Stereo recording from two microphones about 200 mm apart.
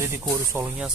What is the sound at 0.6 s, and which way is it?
Speech, 15° right (ahead or behind).